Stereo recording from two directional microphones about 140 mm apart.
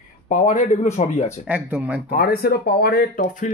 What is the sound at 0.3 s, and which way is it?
Speech, 60° left (ahead or behind).